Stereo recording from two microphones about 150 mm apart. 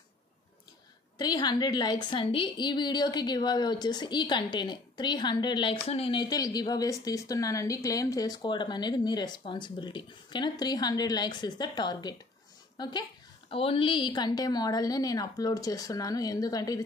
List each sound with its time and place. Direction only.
1.1 s a woman's voice: 30° left (ahead or behind)
6.2 s a woman's voice: 25° left (ahead or behind)